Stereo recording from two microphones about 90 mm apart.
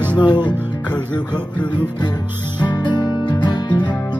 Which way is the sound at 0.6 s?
15° left (ahead or behind).